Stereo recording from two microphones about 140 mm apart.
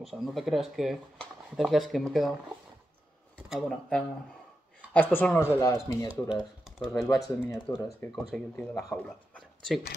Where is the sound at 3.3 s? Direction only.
Centre (ahead or behind).